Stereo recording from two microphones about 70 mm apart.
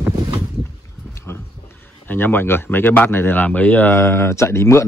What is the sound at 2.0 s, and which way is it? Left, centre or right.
Speech, left.